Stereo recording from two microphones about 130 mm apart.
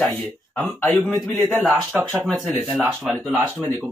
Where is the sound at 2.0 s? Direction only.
15° right (ahead or behind).